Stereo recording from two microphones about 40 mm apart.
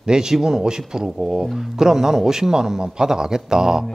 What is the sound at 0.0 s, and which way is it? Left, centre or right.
Speech, centre.